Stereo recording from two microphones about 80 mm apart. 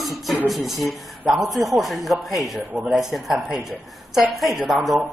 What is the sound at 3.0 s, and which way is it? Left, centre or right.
Speech, centre.